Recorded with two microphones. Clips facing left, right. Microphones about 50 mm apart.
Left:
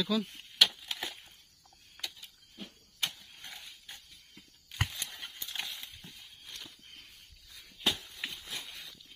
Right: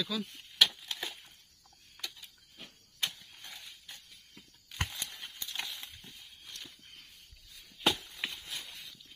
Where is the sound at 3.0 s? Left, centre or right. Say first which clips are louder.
Even; left.